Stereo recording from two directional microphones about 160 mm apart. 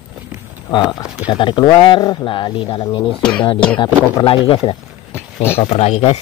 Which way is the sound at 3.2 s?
5° left (ahead or behind).